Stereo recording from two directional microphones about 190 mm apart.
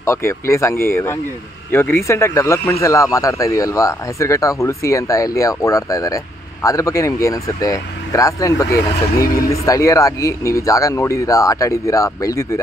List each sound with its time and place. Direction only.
0.0 s a man's voice: 15° left (ahead or behind)